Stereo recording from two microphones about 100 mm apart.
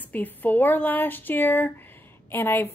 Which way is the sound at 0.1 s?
15° left (ahead or behind).